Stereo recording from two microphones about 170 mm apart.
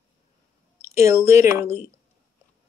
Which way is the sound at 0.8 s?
15° right (ahead or behind).